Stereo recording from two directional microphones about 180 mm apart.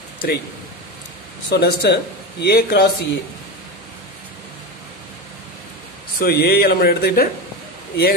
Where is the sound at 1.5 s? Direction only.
65° left (ahead or behind).